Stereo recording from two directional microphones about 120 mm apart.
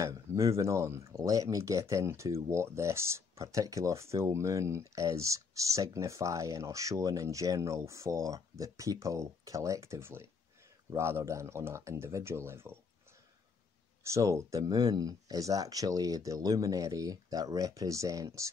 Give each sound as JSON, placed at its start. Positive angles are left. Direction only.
{"t": 0.0, "sound": "speech", "side_deg": -25}
{"t": 14.1, "sound": "speech", "side_deg": -25}